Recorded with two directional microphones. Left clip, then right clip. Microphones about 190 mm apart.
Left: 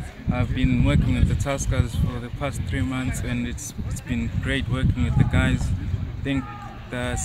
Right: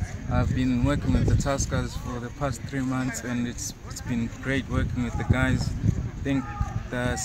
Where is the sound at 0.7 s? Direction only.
Centre (ahead or behind).